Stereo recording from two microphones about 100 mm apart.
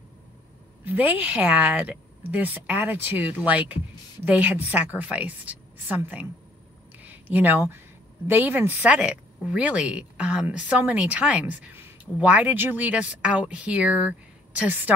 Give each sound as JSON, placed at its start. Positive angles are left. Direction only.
{"t": 0.8, "sound": "speech", "side_deg": -15}
{"t": 7.0, "sound": "a sound", "side_deg": -15}
{"t": 8.3, "sound": "speech", "side_deg": -20}